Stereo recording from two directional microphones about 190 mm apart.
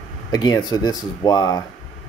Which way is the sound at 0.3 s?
20° left (ahead or behind).